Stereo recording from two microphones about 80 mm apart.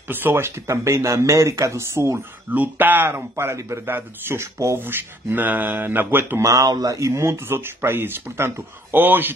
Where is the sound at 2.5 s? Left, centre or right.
Right.